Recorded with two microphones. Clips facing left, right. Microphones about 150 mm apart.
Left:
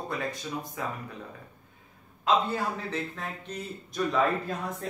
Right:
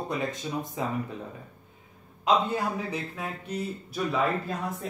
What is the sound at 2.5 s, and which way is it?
A man's voice, 10° right (ahead or behind).